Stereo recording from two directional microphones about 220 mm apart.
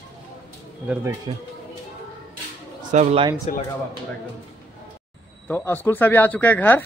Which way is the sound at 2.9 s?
30° right (ahead or behind).